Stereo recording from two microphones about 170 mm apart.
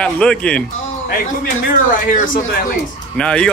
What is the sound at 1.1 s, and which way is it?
A man's voice, 65° left (ahead or behind).